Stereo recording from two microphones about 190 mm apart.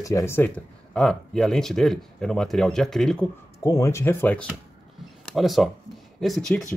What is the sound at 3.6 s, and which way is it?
Speech, 15° left (ahead or behind).